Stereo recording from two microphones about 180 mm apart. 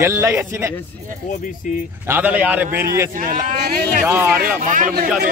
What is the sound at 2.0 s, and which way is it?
Speech, 10° right (ahead or behind).